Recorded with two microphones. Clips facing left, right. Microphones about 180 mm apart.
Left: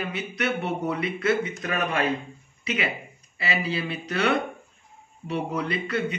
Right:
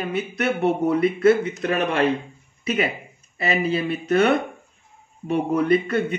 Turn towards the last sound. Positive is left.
turn(degrees=-50)  # may be behind; listen again after turning